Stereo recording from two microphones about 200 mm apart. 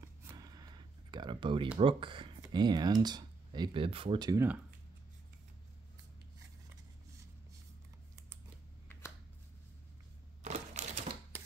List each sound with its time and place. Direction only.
0.2 s a sound: 15° right (ahead or behind)
1.8 s speech: 25° right (ahead or behind)
10.4 s typewriter: 35° right (ahead or behind)